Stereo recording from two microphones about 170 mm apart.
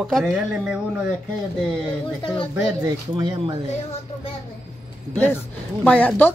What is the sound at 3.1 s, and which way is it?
Speech, 25° right (ahead or behind).